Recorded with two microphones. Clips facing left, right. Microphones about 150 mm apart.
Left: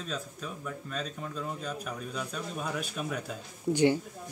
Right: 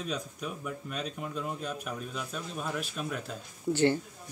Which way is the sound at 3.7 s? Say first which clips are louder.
Left 1 dB; 15° left (ahead or behind).